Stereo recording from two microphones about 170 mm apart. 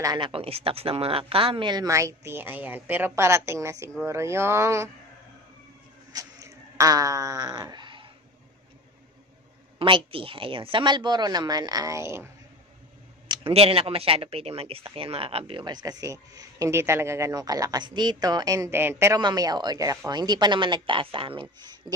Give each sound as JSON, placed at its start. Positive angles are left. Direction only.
{"t": 0.0, "sound": "speech", "side_deg": -25}
{"t": 6.1, "sound": "a sound", "side_deg": -20}
{"t": 9.8, "sound": "speech", "side_deg": -30}
{"t": 13.3, "sound": "speech", "side_deg": -35}